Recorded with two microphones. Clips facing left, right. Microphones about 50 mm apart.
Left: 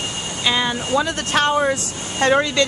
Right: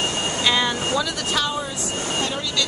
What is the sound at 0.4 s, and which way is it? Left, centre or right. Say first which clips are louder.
Vehicle: left 2 dB; centre.